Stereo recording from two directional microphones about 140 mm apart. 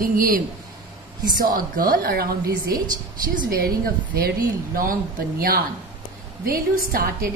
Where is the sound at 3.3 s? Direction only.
90° right.